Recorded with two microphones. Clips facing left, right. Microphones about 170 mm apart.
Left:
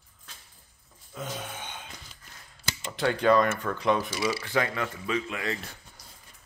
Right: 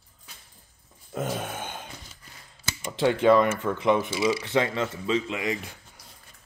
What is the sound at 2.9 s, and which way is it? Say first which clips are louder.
Speech: right 3 dB; 20° right (ahead or behind).